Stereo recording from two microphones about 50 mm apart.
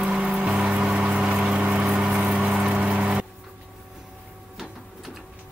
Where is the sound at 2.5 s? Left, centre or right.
Centre.